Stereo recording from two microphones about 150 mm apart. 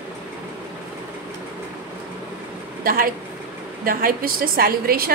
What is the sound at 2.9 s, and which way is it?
A woman's voice, 75° right (ahead or behind).